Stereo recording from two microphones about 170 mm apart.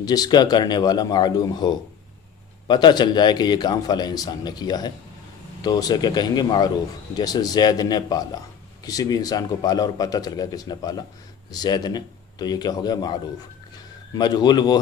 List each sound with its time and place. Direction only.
0.0 s speech: 20° left (ahead or behind)
2.7 s speech: 25° left (ahead or behind)